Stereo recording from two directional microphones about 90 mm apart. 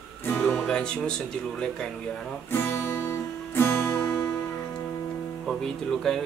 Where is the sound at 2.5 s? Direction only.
25° left (ahead or behind).